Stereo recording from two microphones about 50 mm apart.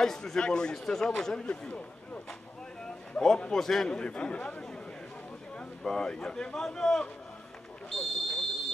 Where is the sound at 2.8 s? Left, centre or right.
Centre.